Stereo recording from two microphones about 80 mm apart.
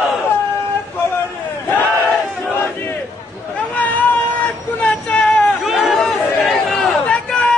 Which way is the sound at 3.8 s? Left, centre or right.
Centre.